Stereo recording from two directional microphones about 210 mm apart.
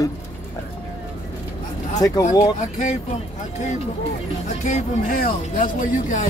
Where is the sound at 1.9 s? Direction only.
15° left (ahead or behind).